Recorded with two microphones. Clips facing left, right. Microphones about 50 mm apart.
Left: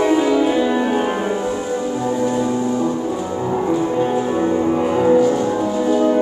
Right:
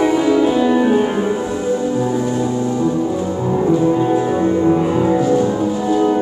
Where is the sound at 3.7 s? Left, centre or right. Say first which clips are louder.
Right 4 dB; centre.